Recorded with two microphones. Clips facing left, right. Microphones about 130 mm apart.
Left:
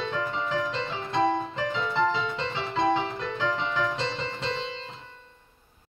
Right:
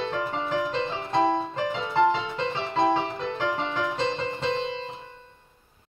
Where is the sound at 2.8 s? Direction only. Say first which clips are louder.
Right 2 dB; 25° right (ahead or behind).